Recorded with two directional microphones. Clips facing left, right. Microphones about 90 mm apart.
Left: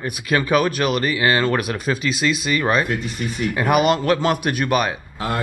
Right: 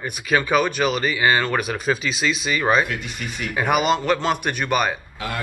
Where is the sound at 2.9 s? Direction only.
35° left (ahead or behind).